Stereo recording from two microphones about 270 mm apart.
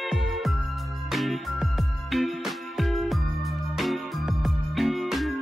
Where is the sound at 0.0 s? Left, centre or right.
Centre.